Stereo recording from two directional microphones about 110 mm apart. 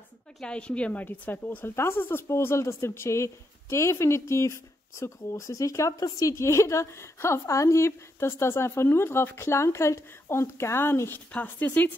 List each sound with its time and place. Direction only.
0.4 s speech: 10° left (ahead or behind)